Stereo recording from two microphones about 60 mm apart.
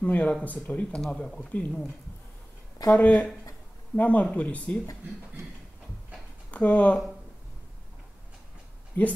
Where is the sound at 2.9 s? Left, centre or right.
Left.